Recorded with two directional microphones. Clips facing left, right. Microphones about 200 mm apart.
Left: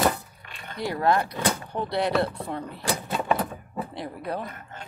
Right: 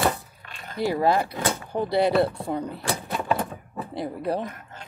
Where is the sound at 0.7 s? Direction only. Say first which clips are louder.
Right 2 dB; 5° right (ahead or behind).